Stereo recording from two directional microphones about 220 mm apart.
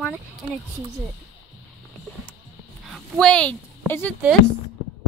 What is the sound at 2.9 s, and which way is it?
A woman's voice, 5° left (ahead or behind).